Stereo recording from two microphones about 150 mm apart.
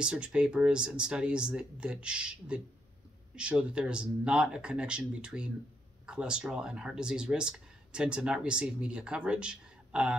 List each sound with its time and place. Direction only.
0.0 s speech: 5° right (ahead or behind)